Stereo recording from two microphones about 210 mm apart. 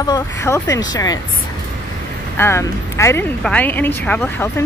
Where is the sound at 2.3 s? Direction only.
10° left (ahead or behind).